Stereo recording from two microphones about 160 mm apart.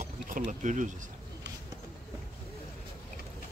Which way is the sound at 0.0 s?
60° right (ahead or behind).